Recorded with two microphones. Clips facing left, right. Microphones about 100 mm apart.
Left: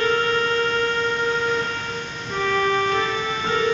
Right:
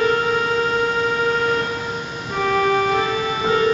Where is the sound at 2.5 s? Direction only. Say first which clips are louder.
Right 3 dB; 10° right (ahead or behind).